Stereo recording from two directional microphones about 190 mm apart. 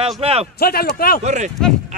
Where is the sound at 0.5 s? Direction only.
55° left (ahead or behind).